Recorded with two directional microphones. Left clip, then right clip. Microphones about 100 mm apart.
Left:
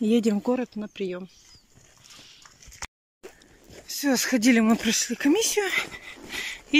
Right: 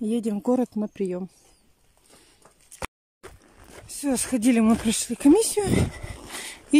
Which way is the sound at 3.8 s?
25° right (ahead or behind).